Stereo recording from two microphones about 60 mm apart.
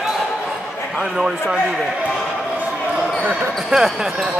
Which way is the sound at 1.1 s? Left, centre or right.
Centre.